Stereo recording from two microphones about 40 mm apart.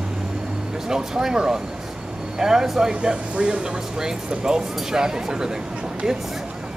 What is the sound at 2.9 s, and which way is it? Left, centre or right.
Speech, right.